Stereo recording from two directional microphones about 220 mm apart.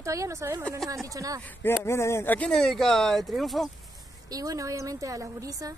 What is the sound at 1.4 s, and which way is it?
Speech, 10° left (ahead or behind).